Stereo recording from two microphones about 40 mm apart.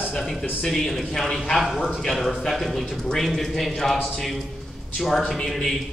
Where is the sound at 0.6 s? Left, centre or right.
Centre.